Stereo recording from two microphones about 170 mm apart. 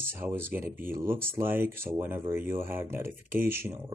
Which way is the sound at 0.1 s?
15° right (ahead or behind).